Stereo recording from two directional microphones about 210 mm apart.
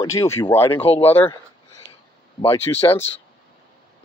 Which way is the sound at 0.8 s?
30° left (ahead or behind).